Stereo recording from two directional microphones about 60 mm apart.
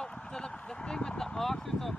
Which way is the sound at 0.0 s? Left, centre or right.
Centre.